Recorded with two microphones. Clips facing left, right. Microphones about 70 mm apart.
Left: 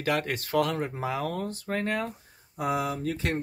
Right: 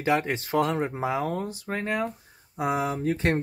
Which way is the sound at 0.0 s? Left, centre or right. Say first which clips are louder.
Right 3 dB; centre.